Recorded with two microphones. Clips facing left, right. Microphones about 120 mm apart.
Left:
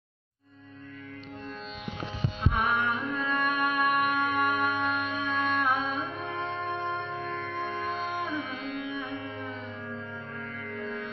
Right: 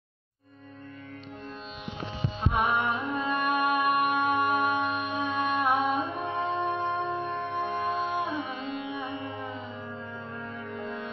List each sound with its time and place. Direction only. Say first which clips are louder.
2.5 s music: right 2 dB; 20° right (ahead or behind)